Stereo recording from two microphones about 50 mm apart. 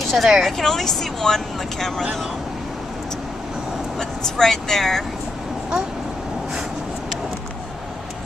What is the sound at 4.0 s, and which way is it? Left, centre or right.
Speech, centre.